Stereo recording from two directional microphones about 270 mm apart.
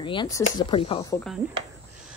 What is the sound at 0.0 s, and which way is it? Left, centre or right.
Speech, centre.